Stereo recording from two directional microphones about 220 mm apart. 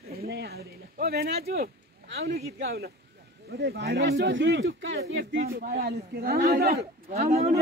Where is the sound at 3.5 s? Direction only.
45° right (ahead or behind).